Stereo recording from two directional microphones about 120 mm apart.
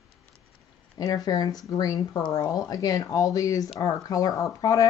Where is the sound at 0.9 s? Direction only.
30° left (ahead or behind).